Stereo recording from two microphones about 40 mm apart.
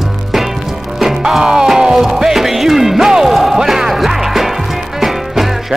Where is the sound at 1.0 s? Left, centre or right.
Centre.